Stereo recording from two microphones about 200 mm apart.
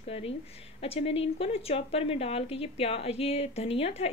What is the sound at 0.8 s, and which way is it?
Speech, 30° left (ahead or behind).